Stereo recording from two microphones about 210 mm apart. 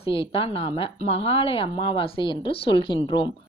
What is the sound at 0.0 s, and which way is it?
Speech, 25° left (ahead or behind).